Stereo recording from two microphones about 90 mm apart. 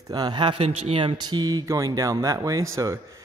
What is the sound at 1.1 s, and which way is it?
A man's voice, 50° right (ahead or behind).